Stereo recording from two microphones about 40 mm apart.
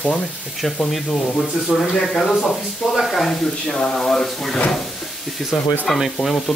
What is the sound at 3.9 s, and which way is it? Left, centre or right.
Speech, centre.